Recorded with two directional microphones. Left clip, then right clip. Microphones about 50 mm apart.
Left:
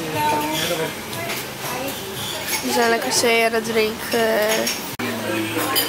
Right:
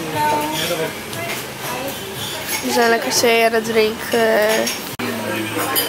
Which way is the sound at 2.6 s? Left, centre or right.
Right.